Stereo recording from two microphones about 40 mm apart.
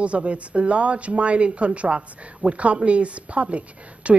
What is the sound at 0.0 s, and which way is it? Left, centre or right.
Speech, right.